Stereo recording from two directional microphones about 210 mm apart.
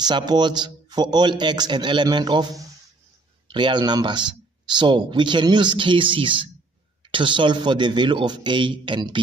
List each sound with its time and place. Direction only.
0.0 s speech: 20° right (ahead or behind)